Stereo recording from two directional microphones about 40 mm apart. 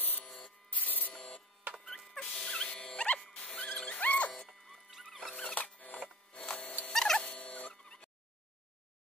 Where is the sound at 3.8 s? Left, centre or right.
Left.